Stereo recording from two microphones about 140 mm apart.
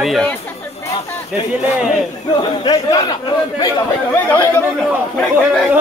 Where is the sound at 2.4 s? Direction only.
30° left (ahead or behind).